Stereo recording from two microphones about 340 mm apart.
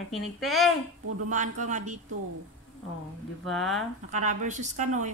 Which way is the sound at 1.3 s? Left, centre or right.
Right.